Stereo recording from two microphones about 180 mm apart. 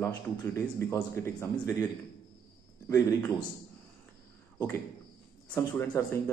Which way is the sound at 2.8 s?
10° left (ahead or behind).